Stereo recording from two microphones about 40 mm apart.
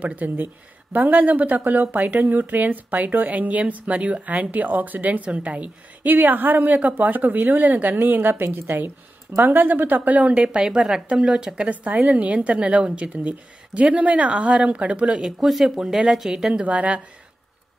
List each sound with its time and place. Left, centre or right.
0.0 s a woman's voice: right
5.2 s a woman's voice: right
6.1 s speech: right
9.4 s speech: right
10.4 s a woman's voice: right
12.4 s a woman's voice: right
15.2 s speech: centre
16.6 s a woman's voice: right